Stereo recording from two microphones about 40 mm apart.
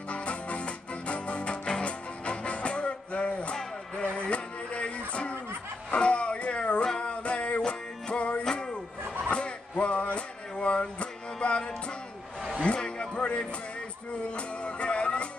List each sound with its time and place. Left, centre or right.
0.1 s music: left
4.0 s a sound: left
5.9 s music: left
8.5 s music: centre
9.3 s music: left
12.6 s a sound: left
14.3 s music: left